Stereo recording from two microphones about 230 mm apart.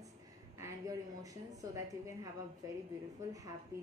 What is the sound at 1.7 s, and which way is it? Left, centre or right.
A woman's voice, centre.